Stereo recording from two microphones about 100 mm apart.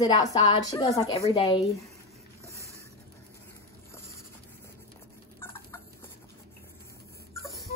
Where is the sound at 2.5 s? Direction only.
30° right (ahead or behind).